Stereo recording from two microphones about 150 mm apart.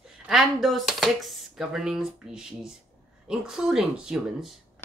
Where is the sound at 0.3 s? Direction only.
Centre (ahead or behind).